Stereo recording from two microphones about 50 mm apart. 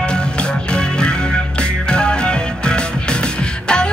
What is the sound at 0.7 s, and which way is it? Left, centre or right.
Music, centre.